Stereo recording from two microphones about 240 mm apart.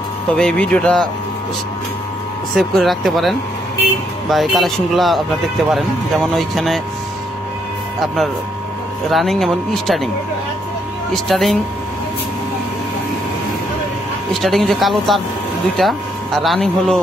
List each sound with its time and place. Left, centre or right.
0.3 s speech: centre
2.5 s speech: centre
9.1 s speech: centre
11.2 s speech: centre
14.4 s speech: centre